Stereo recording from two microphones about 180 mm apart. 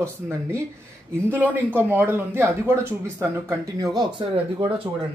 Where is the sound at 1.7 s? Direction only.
10° right (ahead or behind); by 4.9 s 30° right (ahead or behind).